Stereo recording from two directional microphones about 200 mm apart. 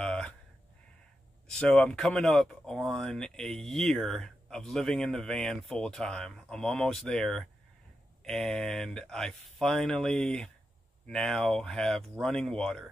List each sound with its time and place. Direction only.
0.0 s crow: 5° left (ahead or behind)
1.6 s speech: 5° left (ahead or behind)